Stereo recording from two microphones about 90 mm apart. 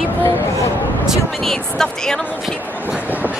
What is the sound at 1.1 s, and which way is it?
Speech, 5° left (ahead or behind).